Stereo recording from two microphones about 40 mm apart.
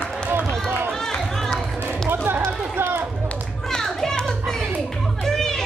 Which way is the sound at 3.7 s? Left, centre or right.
Centre.